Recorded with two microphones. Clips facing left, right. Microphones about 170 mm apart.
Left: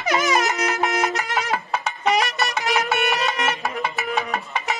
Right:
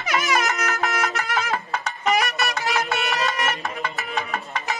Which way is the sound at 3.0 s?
20° left (ahead or behind).